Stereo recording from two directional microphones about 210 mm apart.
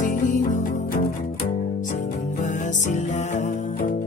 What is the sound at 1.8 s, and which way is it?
Music, 40° left (ahead or behind).